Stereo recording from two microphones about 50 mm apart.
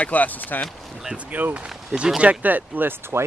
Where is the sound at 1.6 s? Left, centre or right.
Centre.